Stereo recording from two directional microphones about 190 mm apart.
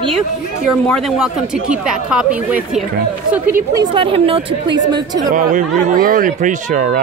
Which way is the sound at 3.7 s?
25° right (ahead or behind).